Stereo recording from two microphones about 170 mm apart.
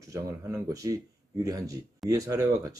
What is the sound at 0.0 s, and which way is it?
Speech, 20° right (ahead or behind).